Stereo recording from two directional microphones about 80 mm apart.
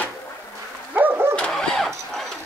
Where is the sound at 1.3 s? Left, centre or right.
Centre.